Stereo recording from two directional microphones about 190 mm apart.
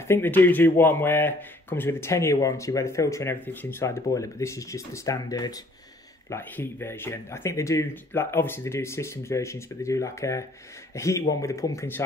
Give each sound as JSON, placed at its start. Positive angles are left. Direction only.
{"t": 0.1, "sound": "speech", "side_deg": 10}